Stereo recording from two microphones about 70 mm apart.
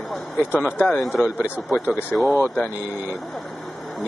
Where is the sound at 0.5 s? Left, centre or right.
Centre.